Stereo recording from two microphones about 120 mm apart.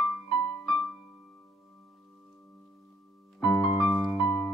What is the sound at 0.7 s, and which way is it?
Music, 5° left (ahead or behind).